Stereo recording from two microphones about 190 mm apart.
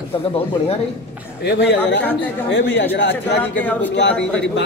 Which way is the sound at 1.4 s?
65° left (ahead or behind).